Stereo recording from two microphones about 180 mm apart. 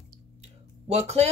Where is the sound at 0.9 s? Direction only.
35° right (ahead or behind).